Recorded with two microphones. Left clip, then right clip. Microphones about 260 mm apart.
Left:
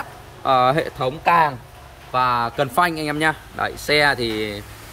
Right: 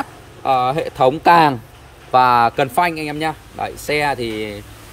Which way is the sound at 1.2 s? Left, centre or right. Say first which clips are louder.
Right 3 dB; right.